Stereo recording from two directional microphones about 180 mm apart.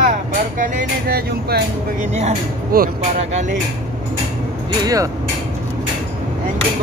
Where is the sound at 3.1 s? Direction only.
40° right (ahead or behind).